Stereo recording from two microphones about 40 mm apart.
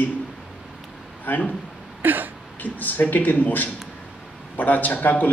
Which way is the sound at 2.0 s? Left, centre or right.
Right.